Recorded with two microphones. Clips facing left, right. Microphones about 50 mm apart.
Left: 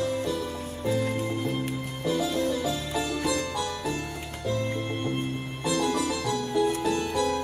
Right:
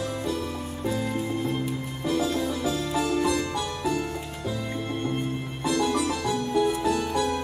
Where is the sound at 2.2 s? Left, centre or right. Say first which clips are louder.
Even; right.